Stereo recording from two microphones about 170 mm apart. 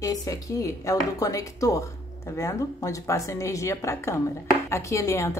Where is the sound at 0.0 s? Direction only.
20° left (ahead or behind).